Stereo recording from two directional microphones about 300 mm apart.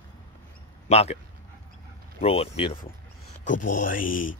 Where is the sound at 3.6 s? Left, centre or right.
Left.